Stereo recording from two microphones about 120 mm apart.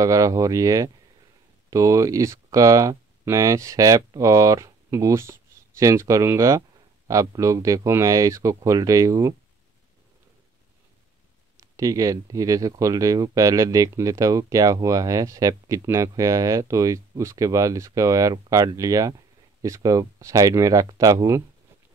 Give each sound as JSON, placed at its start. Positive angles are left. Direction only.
{"t": 0.0, "sound": "speech", "side_deg": -25}
{"t": 11.7, "sound": "speech", "side_deg": -25}